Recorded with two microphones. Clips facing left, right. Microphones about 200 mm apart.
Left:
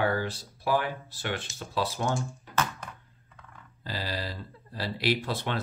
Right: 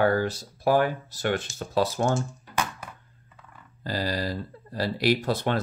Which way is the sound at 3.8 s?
45° right (ahead or behind).